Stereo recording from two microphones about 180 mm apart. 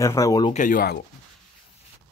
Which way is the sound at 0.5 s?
50° left (ahead or behind).